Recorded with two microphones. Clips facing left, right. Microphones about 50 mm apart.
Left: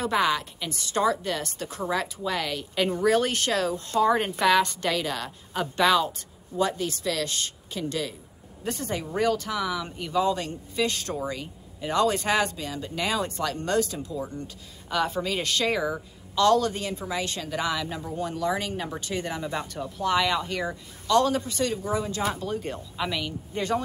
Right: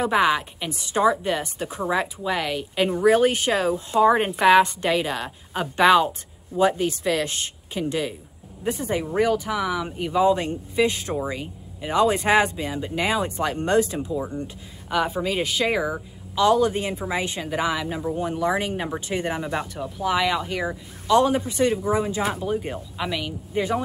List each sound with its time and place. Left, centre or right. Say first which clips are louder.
0.0 s speech: right 4 dB; centre
20.0 s speech: right 2 dB; centre